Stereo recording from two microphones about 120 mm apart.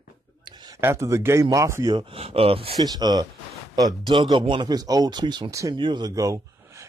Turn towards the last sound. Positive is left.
turn(degrees=-30)  # may be behind; listen again after turning